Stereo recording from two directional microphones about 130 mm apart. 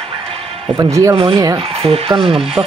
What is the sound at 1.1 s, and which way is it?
Speech, 50° right (ahead or behind).